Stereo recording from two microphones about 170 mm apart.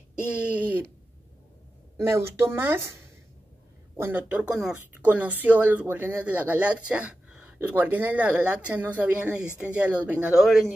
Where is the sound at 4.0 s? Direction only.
10° right (ahead or behind).